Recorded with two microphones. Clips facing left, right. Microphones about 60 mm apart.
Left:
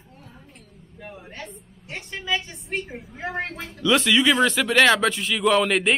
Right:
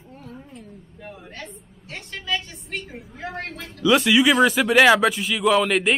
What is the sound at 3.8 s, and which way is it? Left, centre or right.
Speech, centre.